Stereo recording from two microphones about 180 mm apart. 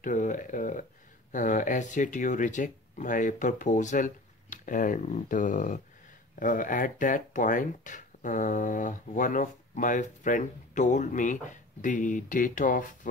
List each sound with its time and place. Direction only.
0.0 s speech: 45° left (ahead or behind)